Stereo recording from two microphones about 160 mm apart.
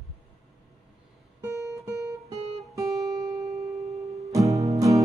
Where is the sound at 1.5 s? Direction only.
15° right (ahead or behind).